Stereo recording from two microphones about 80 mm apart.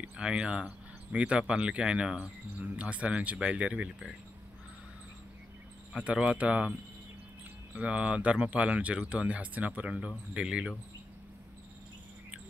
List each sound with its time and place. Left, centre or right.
0.0 s a sound: centre
1.5 s speech: centre
5.9 s speech: centre
7.7 s speech: centre